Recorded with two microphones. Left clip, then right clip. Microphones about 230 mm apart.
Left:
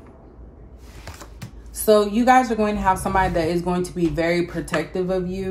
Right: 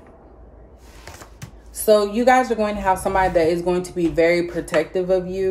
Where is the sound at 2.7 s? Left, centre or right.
Centre.